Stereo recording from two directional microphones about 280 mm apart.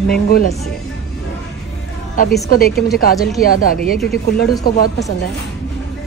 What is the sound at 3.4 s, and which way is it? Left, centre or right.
A woman's voice, left.